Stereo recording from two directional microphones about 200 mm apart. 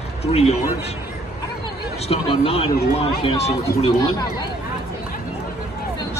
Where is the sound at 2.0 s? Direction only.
30° left (ahead or behind).